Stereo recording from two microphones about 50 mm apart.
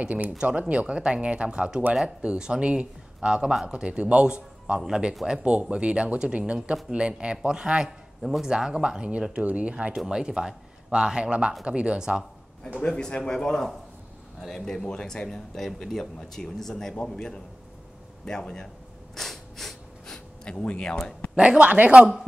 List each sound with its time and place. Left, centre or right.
0.0 s speech: right
9.9 s speech: centre
12.8 s speech: centre
19.1 s snort: centre
20.4 s speech: left
21.4 s speech: right